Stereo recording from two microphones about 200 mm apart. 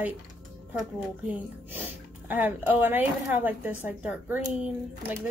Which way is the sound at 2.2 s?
10° right (ahead or behind).